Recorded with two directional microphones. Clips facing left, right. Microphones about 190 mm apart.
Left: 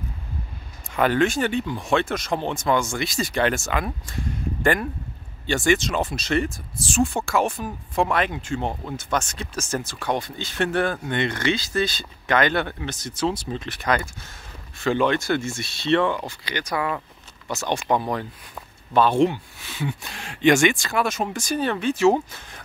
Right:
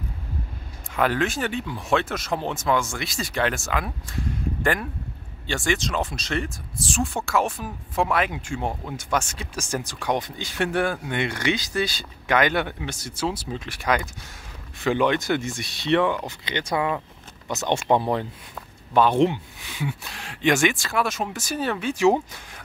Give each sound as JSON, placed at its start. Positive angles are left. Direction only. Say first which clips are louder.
{"t": 0.9, "sound": "speech", "louder": "left 3 dB", "side_deg": 0}
{"t": 5.5, "sound": "speech", "louder": "left 4 dB", "side_deg": 0}